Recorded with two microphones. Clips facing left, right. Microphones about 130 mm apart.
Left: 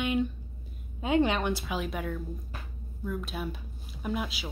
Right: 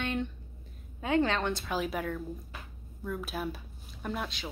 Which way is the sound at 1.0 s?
15° left (ahead or behind).